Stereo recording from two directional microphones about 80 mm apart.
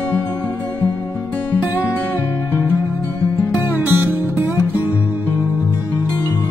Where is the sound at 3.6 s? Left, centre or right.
Right.